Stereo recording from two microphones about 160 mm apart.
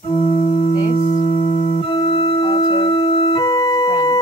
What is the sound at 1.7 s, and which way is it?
Music, 30° left (ahead or behind).